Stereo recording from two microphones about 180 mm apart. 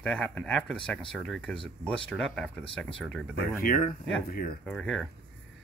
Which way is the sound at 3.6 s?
50° left (ahead or behind).